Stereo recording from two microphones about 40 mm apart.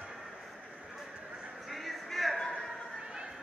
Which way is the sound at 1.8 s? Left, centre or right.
Centre.